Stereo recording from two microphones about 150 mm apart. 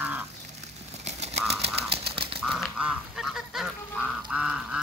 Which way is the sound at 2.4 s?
Centre (ahead or behind).